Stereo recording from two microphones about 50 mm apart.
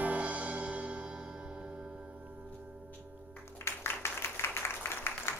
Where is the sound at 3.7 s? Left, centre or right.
Left.